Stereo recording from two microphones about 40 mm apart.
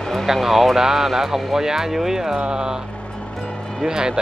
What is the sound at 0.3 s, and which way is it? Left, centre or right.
Speech, centre.